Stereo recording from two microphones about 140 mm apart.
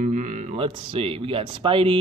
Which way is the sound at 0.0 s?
60° right (ahead or behind).